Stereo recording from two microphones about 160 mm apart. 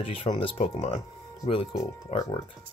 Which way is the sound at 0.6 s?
45° left (ahead or behind).